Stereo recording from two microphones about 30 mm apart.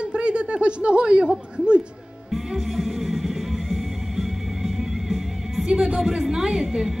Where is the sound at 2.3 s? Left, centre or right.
Centre.